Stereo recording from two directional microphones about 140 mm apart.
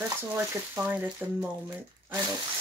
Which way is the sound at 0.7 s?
10° right (ahead or behind).